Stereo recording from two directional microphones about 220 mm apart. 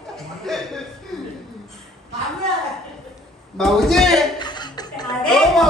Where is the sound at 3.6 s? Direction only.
Centre (ahead or behind).